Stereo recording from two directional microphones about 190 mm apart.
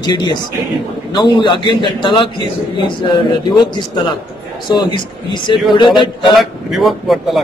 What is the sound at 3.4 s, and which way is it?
Speech, 20° left (ahead or behind).